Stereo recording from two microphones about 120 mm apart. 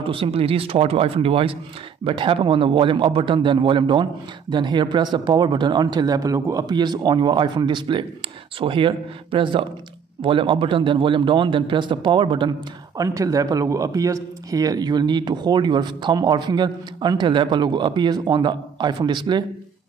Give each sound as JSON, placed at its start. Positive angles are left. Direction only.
{"t": 0.0, "sound": "a man's voice", "side_deg": -50}